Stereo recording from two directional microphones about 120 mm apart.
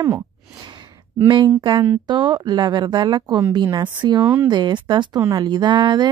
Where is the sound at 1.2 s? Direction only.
40° right (ahead or behind).